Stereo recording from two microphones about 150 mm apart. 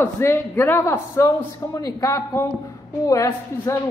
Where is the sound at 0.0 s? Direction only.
15° left (ahead or behind).